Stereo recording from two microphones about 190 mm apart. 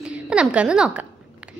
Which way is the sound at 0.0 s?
5° right (ahead or behind).